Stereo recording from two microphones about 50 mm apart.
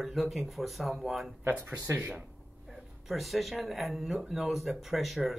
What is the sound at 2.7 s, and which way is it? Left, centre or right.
Speech, centre.